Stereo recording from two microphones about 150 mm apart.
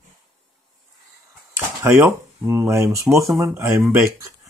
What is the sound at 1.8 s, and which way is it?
Speech, 15° right (ahead or behind).